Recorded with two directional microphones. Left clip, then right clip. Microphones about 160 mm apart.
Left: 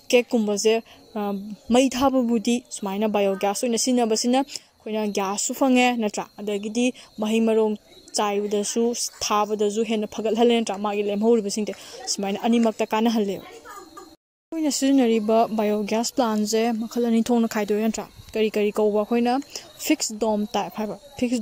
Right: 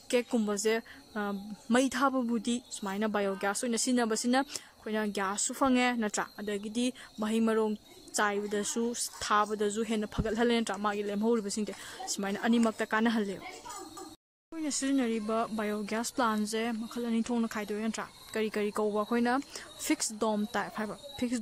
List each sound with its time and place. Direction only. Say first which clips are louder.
0.3 s speech: left 9 dB; 10° left (ahead or behind)
14.5 s speech: left 11 dB; 30° left (ahead or behind); by 21.4 s 10° left (ahead or behind)